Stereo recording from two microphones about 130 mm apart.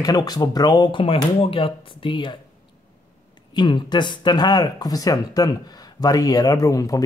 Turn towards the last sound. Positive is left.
turn(degrees=25)  # may be behind; listen again after turning